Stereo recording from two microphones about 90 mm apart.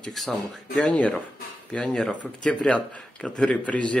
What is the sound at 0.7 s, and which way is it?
Speech, 15° left (ahead or behind).